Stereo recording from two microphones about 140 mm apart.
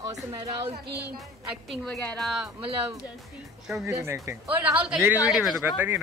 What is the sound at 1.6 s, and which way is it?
Speech, 5° left (ahead or behind).